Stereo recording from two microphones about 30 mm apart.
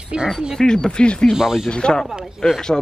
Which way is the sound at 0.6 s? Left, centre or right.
Left.